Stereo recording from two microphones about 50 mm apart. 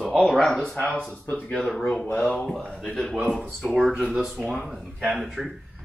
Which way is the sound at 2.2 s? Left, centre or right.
Left.